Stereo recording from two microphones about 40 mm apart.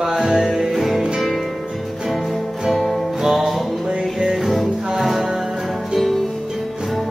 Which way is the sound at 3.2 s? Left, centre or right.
Centre.